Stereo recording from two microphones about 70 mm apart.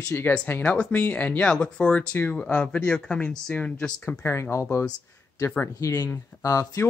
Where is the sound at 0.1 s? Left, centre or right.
Left.